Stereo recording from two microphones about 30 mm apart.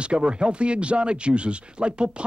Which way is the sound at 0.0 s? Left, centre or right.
Right.